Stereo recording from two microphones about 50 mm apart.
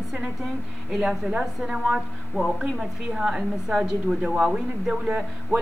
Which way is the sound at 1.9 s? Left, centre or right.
Centre.